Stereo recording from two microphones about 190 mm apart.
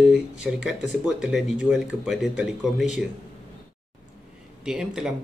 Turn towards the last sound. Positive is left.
turn(degrees=-5)  # may be behind; listen again after turning